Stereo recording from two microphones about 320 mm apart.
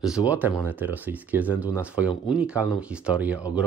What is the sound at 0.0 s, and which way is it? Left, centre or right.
Speech, centre.